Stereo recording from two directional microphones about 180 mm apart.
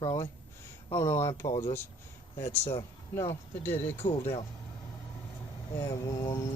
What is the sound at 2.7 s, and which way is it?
Speech, 15° left (ahead or behind).